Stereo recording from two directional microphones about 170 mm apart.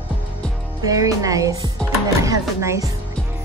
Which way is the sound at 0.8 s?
20° right (ahead or behind).